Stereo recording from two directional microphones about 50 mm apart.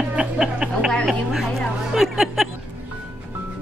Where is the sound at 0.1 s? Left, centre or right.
Centre.